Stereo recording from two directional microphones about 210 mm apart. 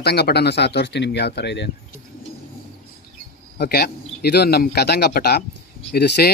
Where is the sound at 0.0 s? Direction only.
50° left (ahead or behind).